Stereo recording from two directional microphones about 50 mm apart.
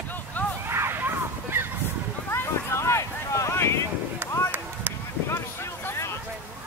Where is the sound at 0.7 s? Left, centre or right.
Right.